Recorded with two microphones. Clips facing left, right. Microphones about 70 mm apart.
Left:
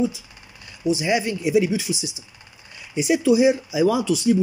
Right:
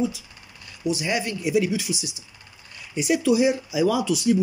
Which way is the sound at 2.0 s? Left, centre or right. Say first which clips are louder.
Left 3 dB; right.